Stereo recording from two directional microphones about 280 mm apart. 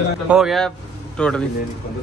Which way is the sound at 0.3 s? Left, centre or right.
Centre.